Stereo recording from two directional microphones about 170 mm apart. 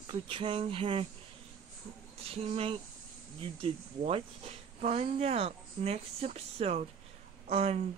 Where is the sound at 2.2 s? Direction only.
35° right (ahead or behind).